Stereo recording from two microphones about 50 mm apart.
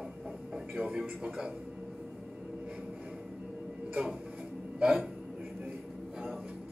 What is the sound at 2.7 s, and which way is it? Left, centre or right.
Vehicle, centre.